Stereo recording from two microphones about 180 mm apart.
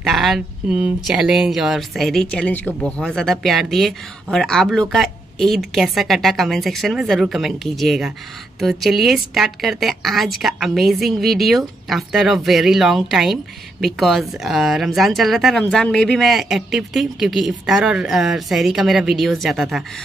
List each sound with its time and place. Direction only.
0.0 s a woman's voice: centre (ahead or behind)